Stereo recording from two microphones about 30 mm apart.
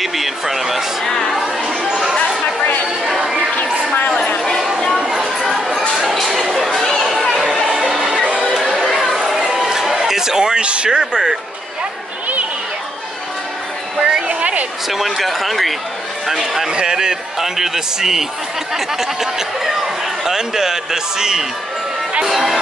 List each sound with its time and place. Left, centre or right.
0.0 s a man's voice: centre
1.0 s a sound: centre
5.6 s a sound: centre
6.5 s chatter: centre
7.7 s music: centre
8.5 s chatter: centre
9.5 s music: centre
10.7 s speech: right
11.0 s a man's voice: centre
13.9 s a sound: right
14.4 s a sound: right
14.9 s speech: centre
16.3 s a man's voice: centre
22.2 s a man's voice: centre